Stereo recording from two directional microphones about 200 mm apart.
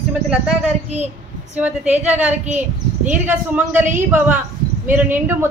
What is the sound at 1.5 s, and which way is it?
A woman's voice, 10° right (ahead or behind).